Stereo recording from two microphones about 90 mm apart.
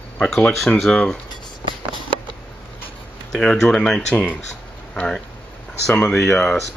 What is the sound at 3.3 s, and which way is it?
Speech, 5° left (ahead or behind).